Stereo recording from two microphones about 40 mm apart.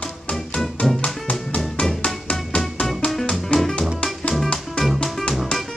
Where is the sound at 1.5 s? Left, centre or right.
Left.